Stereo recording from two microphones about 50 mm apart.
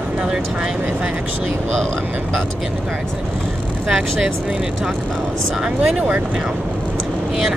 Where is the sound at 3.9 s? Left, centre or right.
Centre.